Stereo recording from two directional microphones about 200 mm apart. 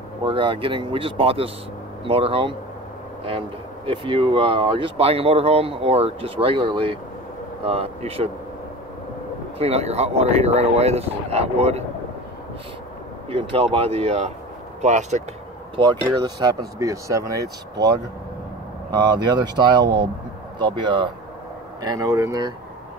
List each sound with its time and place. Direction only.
0.2 s speech: 25° right (ahead or behind)
9.6 s speech: 30° right (ahead or behind)
13.3 s speech: 30° right (ahead or behind)
15.7 s speech: 25° right (ahead or behind)
19.3 s speech: 20° right (ahead or behind)